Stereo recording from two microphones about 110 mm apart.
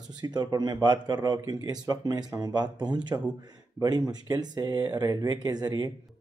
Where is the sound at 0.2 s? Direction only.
40° right (ahead or behind).